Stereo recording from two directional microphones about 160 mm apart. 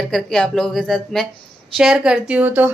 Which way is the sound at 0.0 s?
5° left (ahead or behind).